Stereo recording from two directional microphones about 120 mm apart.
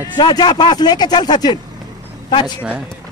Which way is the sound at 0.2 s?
35° left (ahead or behind).